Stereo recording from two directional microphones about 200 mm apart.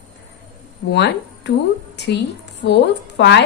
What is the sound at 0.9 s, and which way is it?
A woman's voice, 60° left (ahead or behind).